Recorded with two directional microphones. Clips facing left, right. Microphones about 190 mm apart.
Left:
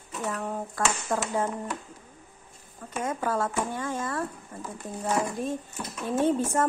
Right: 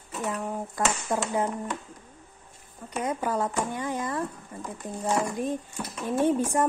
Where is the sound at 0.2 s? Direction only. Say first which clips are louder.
Right 1 dB; 15° right (ahead or behind).